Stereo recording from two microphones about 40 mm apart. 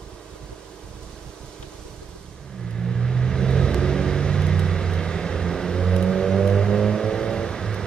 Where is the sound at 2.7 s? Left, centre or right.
Centre.